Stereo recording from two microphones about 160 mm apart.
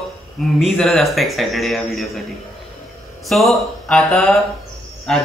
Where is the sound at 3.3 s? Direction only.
Centre (ahead or behind).